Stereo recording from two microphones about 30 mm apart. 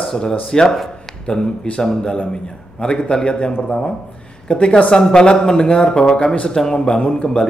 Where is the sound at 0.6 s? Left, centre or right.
Centre.